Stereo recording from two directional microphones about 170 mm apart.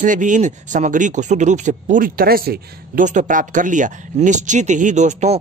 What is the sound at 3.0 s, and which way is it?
Speech, 45° right (ahead or behind).